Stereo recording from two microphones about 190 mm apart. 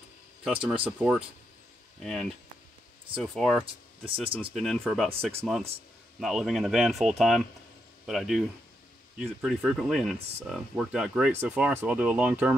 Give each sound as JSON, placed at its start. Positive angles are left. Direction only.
{"t": 0.4, "sound": "speech", "side_deg": -5}
{"t": 3.2, "sound": "speech", "side_deg": 0}
{"t": 4.0, "sound": "speech", "side_deg": -30}
{"t": 4.6, "sound": "speech", "side_deg": 0}